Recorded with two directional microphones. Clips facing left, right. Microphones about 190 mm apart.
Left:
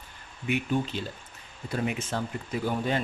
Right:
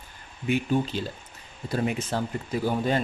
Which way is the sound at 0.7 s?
35° right (ahead or behind).